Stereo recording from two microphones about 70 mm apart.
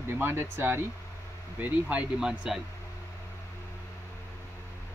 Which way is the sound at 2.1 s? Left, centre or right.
Centre.